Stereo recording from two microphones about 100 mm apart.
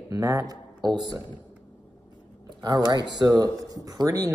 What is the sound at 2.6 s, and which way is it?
Speech, 40° right (ahead or behind).